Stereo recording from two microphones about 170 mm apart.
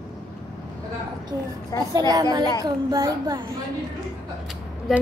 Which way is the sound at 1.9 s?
20° right (ahead or behind).